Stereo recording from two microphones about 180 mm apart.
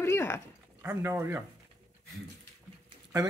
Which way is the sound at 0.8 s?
15° right (ahead or behind).